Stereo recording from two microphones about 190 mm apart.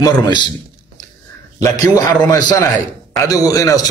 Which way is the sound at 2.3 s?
20° left (ahead or behind).